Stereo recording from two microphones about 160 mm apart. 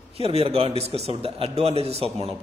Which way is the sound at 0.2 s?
40° right (ahead or behind).